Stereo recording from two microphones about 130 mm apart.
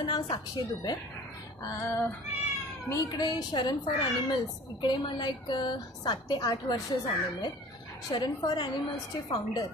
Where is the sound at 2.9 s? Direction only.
30° left (ahead or behind).